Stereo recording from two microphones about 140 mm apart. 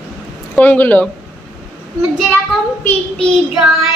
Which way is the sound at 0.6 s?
10° left (ahead or behind).